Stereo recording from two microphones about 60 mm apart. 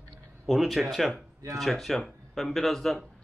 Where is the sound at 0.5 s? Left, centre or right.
Centre.